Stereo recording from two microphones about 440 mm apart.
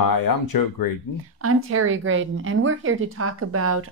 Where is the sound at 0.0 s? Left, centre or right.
Left.